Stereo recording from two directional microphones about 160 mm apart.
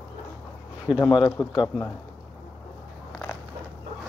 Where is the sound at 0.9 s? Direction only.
30° left (ahead or behind).